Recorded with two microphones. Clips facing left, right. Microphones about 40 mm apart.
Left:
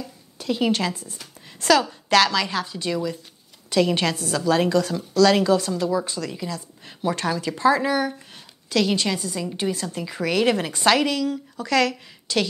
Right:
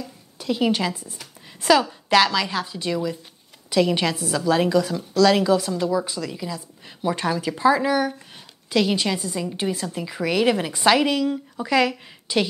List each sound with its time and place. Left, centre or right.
0.0 s a sound: centre
0.7 s a woman's voice: centre
1.1 s a sound: centre
1.9 s a woman's voice: centre
7.2 s a woman's voice: centre
8.6 s a woman's voice: centre
11.1 s a woman's voice: centre